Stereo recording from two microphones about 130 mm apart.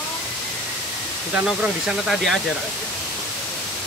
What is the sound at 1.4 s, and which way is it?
Speech, centre (ahead or behind).